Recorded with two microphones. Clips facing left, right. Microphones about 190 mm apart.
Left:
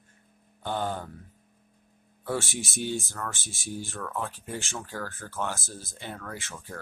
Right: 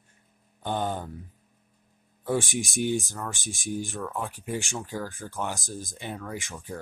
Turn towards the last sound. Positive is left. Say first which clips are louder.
# right 4 dB
turn(degrees=-15)  # may be behind; listen again after turning